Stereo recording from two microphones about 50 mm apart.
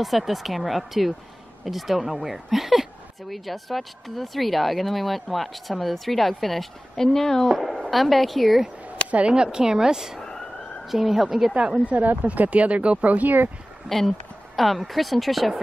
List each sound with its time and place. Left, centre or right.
0.0 s speech: centre
9.3 s a woman's voice: centre
11.8 s speech: right
13.8 s speech: centre